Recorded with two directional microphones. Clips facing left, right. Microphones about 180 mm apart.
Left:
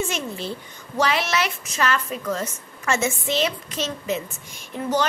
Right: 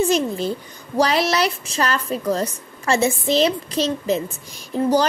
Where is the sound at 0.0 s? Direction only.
40° right (ahead or behind).